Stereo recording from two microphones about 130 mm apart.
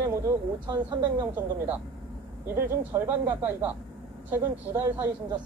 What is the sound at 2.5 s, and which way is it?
Speech, 20° right (ahead or behind).